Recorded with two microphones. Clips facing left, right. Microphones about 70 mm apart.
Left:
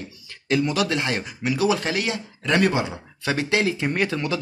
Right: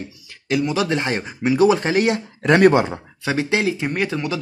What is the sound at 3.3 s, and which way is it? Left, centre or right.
Speech, centre.